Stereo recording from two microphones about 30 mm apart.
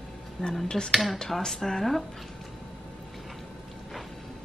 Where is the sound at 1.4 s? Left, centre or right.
Centre.